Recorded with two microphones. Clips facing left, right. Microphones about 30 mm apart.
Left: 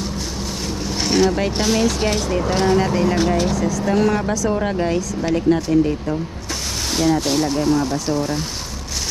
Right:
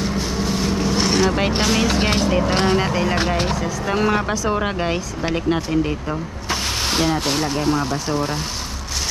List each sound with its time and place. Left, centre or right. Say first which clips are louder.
0.4 s vehicle: right 7 dB; centre
1.3 s speech: even; right
2.5 s speech: left 5 dB; right
2.8 s speech: left 2 dB; right